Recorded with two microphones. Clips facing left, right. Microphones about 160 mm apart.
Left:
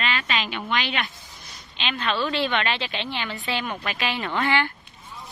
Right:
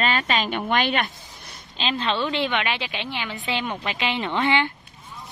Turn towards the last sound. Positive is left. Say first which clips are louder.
# right 2 dB
turn(degrees=-20)  # may be behind; listen again after turning